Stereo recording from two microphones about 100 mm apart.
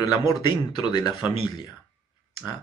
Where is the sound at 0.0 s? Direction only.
40° left (ahead or behind).